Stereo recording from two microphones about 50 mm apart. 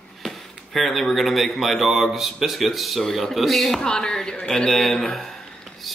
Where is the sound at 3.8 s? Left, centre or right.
Centre.